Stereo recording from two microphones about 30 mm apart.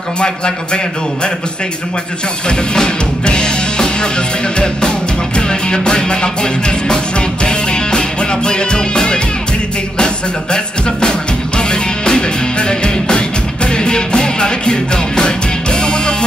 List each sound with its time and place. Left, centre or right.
2.4 s music: left